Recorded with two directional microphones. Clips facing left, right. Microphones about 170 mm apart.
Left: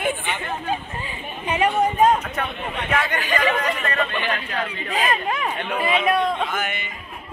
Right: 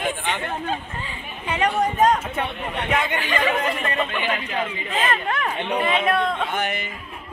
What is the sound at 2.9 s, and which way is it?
Speech, 20° right (ahead or behind).